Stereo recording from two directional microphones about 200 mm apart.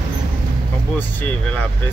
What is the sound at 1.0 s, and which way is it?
Speech, 10° left (ahead or behind).